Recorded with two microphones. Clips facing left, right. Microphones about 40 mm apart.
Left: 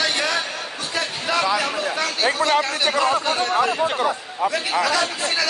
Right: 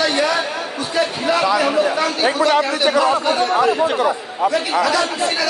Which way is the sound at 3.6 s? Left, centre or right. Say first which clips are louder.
Right 4 dB; right.